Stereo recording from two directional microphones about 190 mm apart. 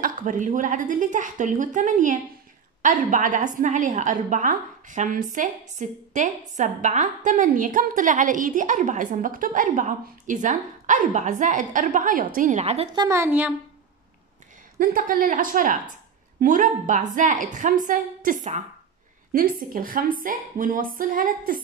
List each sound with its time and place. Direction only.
0.0 s a woman's voice: 45° right (ahead or behind)
12.9 s a woman's voice: 15° right (ahead or behind)
14.8 s a woman's voice: 50° right (ahead or behind)